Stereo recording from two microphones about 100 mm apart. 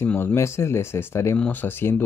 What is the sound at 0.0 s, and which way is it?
Speech, 20° left (ahead or behind).